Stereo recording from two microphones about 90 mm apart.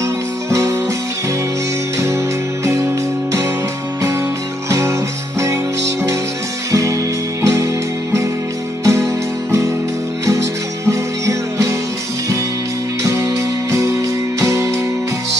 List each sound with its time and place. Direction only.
0.5 s music: 35° right (ahead or behind)
2.6 s music: 35° right (ahead or behind)
4.6 s music: 35° right (ahead or behind)
6.7 s music: 35° right (ahead or behind)
10.9 s music: 35° right (ahead or behind)
13.0 s music: 35° right (ahead or behind)